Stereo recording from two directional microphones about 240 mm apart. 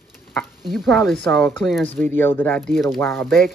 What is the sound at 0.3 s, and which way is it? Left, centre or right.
Speech, centre.